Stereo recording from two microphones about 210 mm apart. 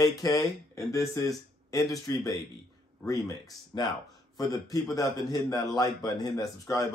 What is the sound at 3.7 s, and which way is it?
Speech, 20° left (ahead or behind).